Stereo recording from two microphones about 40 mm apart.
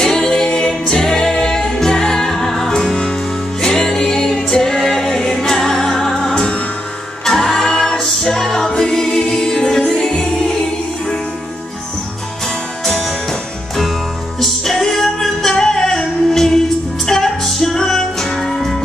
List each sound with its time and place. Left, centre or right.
0.0 s music: centre
6.3 s music: left
7.2 s music: centre
12.8 s music: centre